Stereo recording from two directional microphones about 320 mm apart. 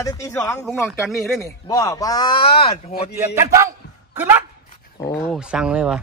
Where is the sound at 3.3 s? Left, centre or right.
Centre.